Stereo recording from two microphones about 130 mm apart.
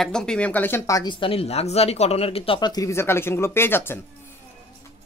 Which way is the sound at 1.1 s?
45° left (ahead or behind).